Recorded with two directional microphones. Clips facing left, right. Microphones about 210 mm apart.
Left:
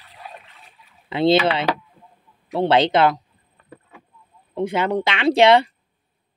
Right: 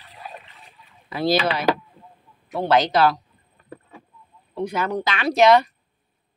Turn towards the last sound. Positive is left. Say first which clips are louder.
# left 2 dB
turn(degrees=30)  # may be behind; listen again after turning